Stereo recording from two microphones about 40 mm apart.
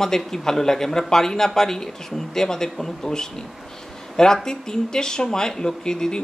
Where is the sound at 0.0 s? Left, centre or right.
Centre.